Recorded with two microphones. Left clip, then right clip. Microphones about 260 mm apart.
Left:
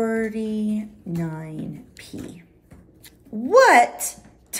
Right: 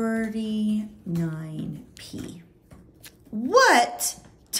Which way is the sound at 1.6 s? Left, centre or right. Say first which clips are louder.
Left 2 dB; centre.